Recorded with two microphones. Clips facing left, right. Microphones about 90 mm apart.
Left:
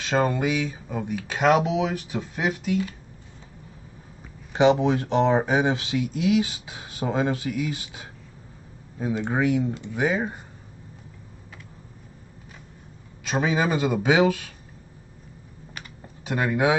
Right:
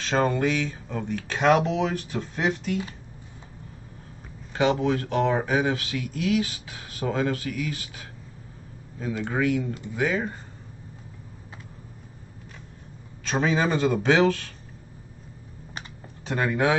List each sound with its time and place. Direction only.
0.0 s speech: 5° left (ahead or behind)
4.6 s speech: 20° left (ahead or behind)
13.2 s speech: 5° left (ahead or behind)
16.3 s speech: 5° left (ahead or behind)